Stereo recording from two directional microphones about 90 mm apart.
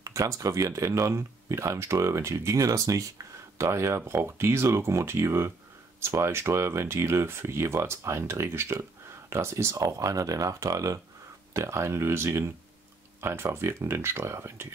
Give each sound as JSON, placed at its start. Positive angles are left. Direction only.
{"t": 0.0, "sound": "speech", "side_deg": -35}